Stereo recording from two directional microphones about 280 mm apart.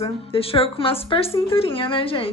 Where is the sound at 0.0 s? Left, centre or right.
Centre.